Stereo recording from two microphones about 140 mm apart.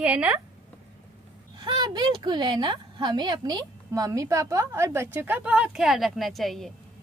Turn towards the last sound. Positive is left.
turn(degrees=0)  # may be behind; listen again after turning